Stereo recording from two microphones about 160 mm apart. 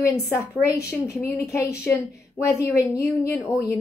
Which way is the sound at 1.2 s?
20° left (ahead or behind).